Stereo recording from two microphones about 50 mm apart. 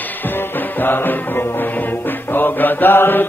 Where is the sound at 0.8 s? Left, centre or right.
Left.